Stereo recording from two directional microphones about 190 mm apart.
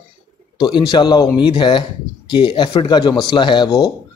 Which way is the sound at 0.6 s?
25° left (ahead or behind).